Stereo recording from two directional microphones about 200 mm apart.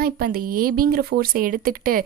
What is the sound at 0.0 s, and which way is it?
Speech, 45° right (ahead or behind).